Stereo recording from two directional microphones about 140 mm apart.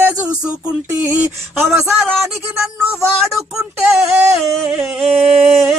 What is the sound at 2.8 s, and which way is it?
Speech, 20° right (ahead or behind).